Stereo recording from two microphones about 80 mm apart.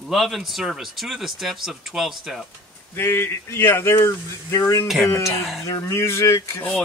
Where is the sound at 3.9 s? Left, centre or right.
Left.